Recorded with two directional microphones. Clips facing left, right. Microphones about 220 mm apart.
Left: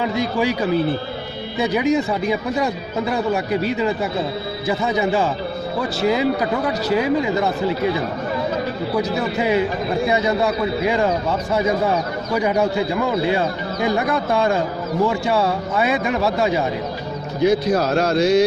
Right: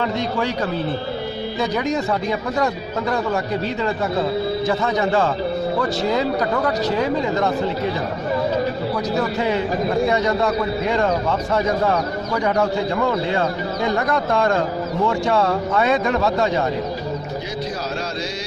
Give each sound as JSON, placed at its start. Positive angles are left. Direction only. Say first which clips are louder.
{"t": 0.0, "sound": "speech", "louder": "left 2 dB", "side_deg": 10}
{"t": 1.6, "sound": "speech", "louder": "left 4 dB", "side_deg": 10}
{"t": 4.6, "sound": "speech", "louder": "left 5 dB", "side_deg": 10}
{"t": 10.0, "sound": "speech", "louder": "even", "side_deg": 10}
{"t": 12.4, "sound": "speech", "louder": "left 1 dB", "side_deg": 10}
{"t": 13.8, "sound": "speech", "louder": "left 1 dB", "side_deg": 10}
{"t": 17.5, "sound": "speech", "louder": "left 13 dB", "side_deg": 60}